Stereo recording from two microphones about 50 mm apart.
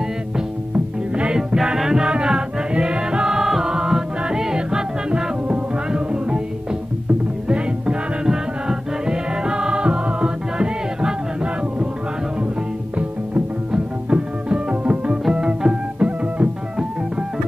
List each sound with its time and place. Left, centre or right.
0.7 s music: right
7.4 s music: centre
13.7 s music: right